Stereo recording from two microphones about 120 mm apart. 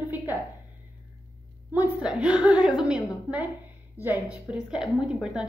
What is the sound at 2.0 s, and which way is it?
A woman's voice, 10° right (ahead or behind).